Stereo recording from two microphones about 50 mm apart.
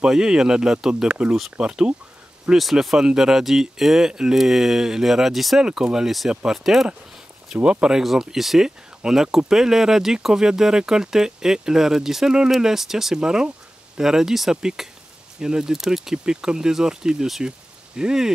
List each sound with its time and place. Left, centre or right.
0.0 s speech: centre
2.5 s speech: centre
5.6 s speech: centre
7.6 s speech: centre
8.0 s speech: centre